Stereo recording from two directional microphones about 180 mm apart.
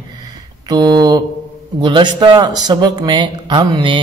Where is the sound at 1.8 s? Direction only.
25° right (ahead or behind).